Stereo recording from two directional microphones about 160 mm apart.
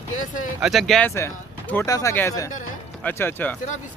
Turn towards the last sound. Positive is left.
turn(degrees=10)  # may be behind; listen again after turning